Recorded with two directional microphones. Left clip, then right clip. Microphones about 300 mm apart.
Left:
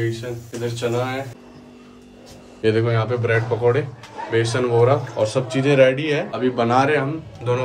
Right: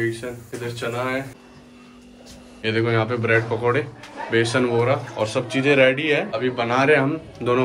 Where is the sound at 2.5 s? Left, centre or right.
Centre.